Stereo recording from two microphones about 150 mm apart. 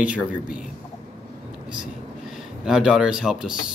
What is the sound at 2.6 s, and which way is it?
Speech, 5° right (ahead or behind).